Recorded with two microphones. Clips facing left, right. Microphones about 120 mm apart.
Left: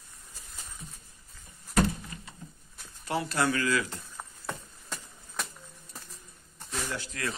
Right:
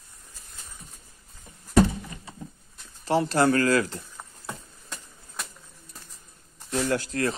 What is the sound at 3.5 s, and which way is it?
Speech, 45° right (ahead or behind).